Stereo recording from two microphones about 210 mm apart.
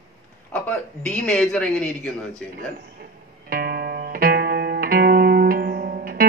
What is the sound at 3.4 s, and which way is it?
Music, 45° right (ahead or behind).